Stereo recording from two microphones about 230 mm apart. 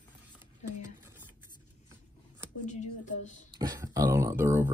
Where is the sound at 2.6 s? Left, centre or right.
Left.